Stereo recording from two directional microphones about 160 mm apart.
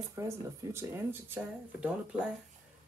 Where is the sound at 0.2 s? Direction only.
15° right (ahead or behind).